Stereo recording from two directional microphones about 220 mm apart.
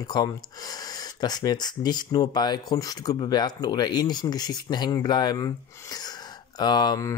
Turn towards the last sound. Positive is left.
turn(degrees=15)  # may be behind; listen again after turning